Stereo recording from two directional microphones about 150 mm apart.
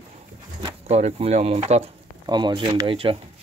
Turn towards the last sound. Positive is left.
turn(degrees=-35)  # may be behind; listen again after turning